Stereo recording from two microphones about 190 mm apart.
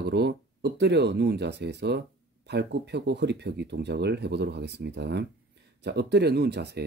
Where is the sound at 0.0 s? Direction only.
60° right (ahead or behind).